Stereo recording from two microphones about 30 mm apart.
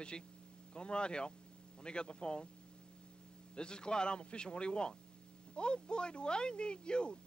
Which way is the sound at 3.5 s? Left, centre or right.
Left.